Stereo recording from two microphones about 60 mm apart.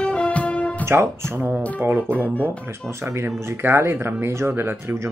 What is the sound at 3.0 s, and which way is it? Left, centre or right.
Speech, right.